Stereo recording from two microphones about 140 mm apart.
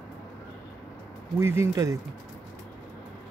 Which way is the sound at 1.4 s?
20° right (ahead or behind).